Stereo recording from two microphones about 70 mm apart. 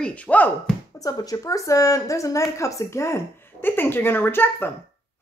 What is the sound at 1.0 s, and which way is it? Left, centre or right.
A woman's voice, left.